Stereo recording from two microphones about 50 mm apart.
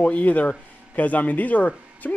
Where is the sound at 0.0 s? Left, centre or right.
Left.